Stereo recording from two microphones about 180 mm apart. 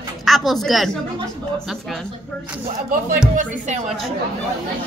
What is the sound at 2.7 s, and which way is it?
Speech, 50° right (ahead or behind).